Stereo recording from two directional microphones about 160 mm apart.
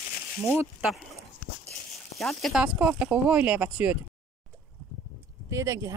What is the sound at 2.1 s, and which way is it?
Speech, centre (ahead or behind).